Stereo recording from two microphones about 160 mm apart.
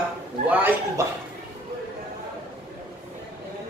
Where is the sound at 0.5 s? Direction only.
10° right (ahead or behind).